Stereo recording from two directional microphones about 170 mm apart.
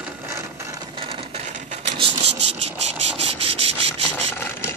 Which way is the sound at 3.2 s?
35° right (ahead or behind).